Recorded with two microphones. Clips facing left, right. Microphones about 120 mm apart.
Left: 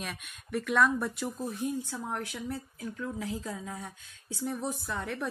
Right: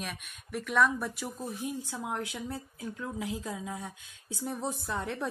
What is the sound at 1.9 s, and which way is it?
A woman's voice, 15° right (ahead or behind).